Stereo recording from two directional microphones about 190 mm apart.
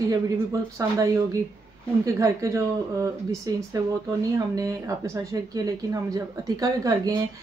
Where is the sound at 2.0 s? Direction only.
15° right (ahead or behind).